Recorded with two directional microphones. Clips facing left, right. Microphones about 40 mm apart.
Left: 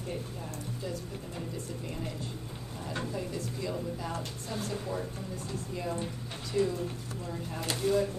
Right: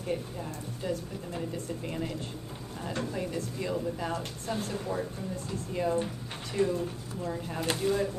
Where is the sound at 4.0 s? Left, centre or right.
Right.